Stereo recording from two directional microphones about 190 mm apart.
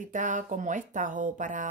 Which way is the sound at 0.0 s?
45° right (ahead or behind).